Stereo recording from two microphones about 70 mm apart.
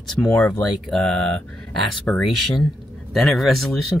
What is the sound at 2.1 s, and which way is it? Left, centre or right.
Speech, left.